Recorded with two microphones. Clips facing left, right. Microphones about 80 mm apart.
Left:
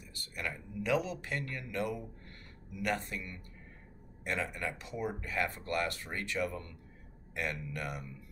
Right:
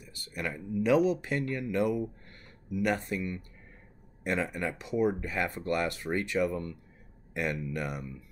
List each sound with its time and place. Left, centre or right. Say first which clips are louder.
0.3 s speech: right 6 dB; centre